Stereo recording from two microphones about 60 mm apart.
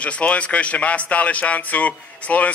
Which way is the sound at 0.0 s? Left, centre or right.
Left.